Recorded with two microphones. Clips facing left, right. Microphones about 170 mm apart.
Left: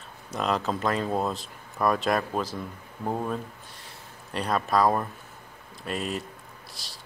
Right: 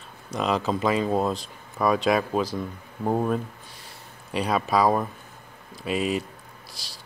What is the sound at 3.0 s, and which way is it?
Speech, 20° right (ahead or behind).